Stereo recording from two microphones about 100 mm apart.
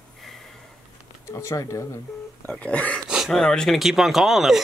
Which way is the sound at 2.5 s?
10° left (ahead or behind).